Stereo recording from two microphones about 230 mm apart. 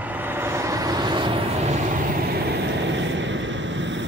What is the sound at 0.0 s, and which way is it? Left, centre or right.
Vehicle, centre.